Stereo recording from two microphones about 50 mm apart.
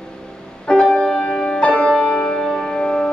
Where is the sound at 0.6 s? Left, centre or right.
Centre.